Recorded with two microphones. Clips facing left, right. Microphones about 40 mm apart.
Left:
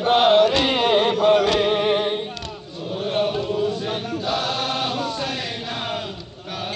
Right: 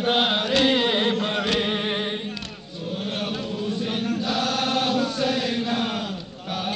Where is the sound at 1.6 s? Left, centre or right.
Centre.